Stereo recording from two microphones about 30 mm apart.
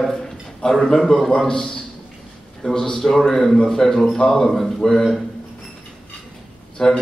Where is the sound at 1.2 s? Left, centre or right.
Left.